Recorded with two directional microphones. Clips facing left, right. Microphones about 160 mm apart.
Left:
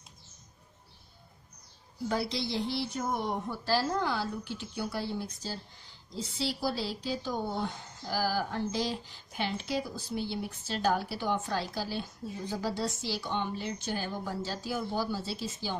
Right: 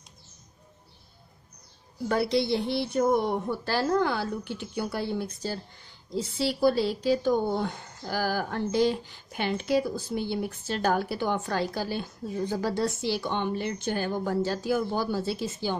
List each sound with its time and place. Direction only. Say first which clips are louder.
2.0 s speech: right 7 dB; 60° right (ahead or behind)